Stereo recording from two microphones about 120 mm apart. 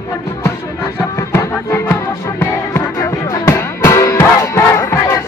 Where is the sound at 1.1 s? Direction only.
20° left (ahead or behind).